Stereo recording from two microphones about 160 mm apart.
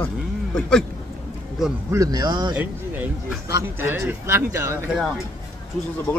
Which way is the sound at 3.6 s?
15° right (ahead or behind).